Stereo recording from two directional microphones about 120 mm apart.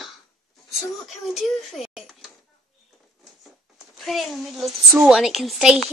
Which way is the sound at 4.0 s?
Centre (ahead or behind).